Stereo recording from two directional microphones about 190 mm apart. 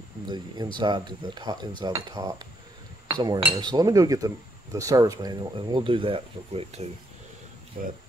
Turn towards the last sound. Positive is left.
turn(degrees=-45)  # may be behind; listen again after turning